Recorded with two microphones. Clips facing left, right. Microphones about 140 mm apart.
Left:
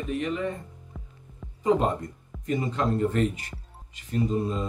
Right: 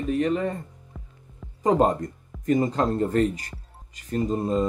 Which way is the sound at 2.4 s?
45° right (ahead or behind).